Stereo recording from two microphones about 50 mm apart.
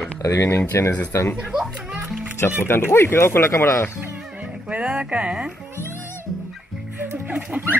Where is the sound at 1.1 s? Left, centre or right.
Left.